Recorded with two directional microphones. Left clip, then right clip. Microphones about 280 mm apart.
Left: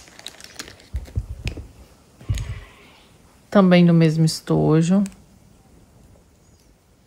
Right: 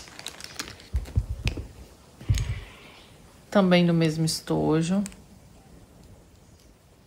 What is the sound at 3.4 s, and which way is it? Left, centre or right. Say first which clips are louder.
Speech: left 5 dB; left.